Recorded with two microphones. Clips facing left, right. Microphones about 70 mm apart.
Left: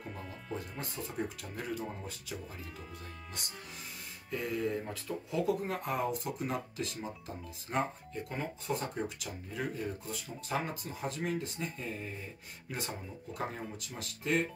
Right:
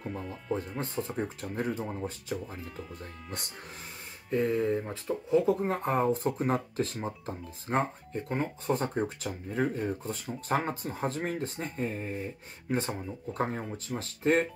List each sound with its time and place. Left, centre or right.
0.1 s speech: centre
0.6 s speech: right
4.3 s speech: right